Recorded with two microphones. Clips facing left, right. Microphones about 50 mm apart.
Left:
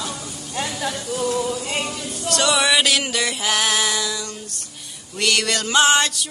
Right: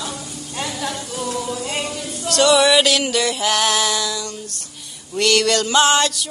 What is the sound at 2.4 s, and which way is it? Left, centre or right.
Music, centre.